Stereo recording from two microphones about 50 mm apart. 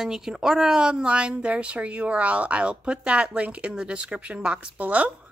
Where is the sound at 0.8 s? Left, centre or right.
Right.